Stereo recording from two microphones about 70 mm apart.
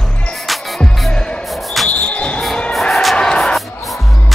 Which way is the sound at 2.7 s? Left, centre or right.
Centre.